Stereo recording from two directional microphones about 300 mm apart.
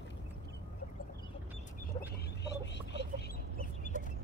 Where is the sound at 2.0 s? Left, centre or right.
Left.